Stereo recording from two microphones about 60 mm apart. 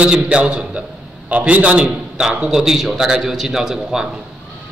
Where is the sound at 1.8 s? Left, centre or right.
Centre.